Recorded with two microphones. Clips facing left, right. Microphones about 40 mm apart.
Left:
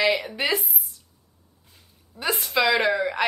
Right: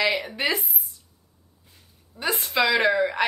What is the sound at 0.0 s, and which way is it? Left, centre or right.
Speech, centre.